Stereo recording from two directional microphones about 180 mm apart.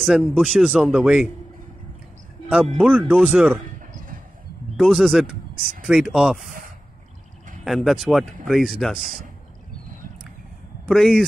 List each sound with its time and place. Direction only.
0.0 s speech: 5° right (ahead or behind)
2.8 s speech: 5° right (ahead or behind)
4.7 s speech: centre (ahead or behind)
7.6 s speech: centre (ahead or behind)
10.9 s speech: centre (ahead or behind)